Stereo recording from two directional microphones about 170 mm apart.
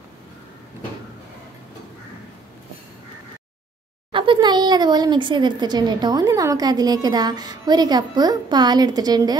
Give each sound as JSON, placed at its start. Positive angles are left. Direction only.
{"t": 4.1, "sound": "speech", "side_deg": -30}